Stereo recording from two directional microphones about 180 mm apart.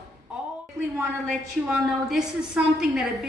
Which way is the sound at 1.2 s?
Centre (ahead or behind).